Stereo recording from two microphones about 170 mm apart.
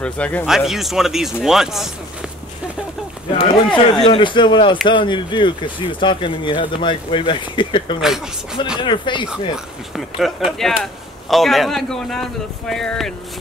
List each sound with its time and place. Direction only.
0.0 s speech: 10° left (ahead or behind)
3.3 s speech: 30° left (ahead or behind)
8.0 s speech: 5° right (ahead or behind)
8.7 s speech: 30° left (ahead or behind)
9.9 s speech: centre (ahead or behind)